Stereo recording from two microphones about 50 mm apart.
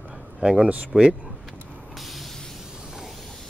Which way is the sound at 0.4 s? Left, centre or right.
Centre.